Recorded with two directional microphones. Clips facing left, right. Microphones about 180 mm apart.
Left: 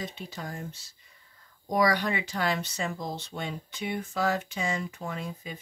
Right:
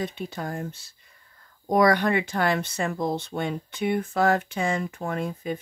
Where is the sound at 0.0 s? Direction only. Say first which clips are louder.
Right 7 dB; 55° right (ahead or behind).